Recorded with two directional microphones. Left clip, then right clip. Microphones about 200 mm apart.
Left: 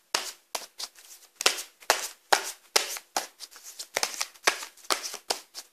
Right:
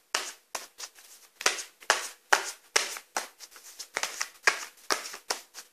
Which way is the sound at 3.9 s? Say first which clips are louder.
Left 3 dB; 25° left (ahead or behind).